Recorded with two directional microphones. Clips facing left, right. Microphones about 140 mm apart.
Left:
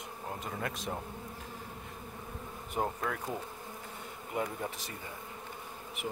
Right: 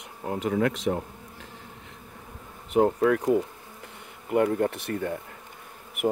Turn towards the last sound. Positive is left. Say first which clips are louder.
# right 13 dB
turn(degrees=-55)  # may be behind; listen again after turning